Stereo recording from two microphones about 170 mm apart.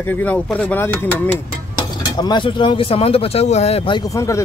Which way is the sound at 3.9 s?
20° left (ahead or behind).